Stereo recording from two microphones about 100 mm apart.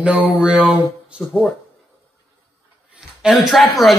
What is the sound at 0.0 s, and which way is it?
A man's voice, 10° right (ahead or behind).